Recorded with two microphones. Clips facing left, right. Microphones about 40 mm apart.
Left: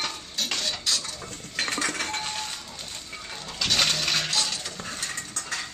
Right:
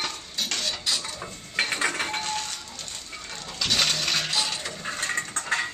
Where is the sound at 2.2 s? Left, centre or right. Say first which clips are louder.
Right 2 dB; centre.